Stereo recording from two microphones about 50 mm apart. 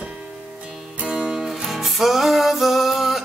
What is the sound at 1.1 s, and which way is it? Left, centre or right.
Music, centre.